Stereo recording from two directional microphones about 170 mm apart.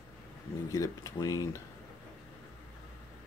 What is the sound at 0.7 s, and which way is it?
Speech, 20° left (ahead or behind).